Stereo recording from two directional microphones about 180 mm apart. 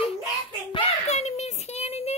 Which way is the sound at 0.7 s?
35° left (ahead or behind).